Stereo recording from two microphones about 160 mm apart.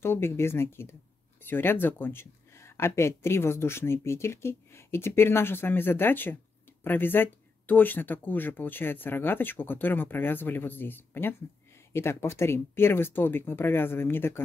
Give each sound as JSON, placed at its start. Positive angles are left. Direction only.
{"t": 0.0, "sound": "speech", "side_deg": 15}